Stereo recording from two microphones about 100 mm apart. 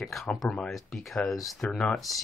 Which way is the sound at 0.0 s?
Centre (ahead or behind).